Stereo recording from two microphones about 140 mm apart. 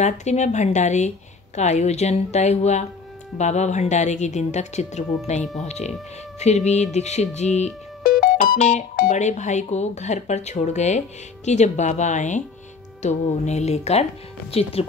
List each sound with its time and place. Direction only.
0.0 s speech: 55° left (ahead or behind)
8.0 s music: 90° left
8.5 s speech: 55° left (ahead or behind)
8.9 s speech: 75° left (ahead or behind); by 14.9 s 45° left (ahead or behind)